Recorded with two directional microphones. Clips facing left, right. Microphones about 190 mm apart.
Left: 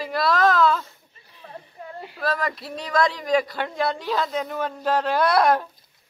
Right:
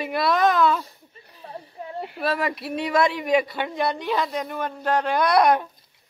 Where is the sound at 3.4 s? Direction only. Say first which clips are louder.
Even; centre (ahead or behind).